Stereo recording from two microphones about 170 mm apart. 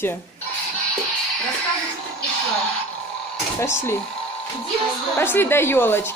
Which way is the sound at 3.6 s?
15° left (ahead or behind).